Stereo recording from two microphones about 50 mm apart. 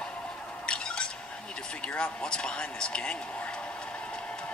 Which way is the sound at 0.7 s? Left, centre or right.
Centre.